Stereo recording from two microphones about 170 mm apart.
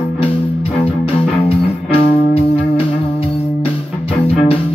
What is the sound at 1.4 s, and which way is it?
Music, 35° left (ahead or behind).